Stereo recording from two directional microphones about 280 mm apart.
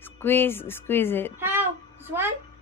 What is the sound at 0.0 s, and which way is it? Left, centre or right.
Speech, centre.